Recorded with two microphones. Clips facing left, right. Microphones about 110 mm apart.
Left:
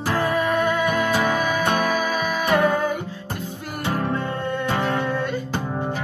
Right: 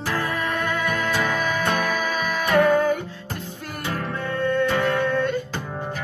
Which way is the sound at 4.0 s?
15° left (ahead or behind).